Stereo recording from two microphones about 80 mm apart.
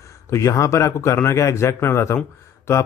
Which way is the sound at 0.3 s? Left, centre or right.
Left.